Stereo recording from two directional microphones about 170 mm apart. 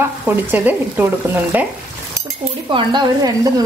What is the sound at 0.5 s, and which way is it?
Speech, 10° right (ahead or behind).